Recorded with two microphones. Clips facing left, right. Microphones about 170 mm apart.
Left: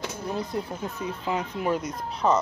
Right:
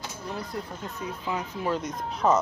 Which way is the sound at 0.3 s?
20° left (ahead or behind).